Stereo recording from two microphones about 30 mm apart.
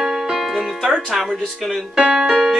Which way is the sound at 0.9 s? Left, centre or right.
Centre.